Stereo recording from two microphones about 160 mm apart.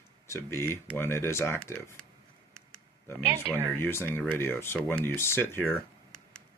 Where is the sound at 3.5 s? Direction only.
15° left (ahead or behind).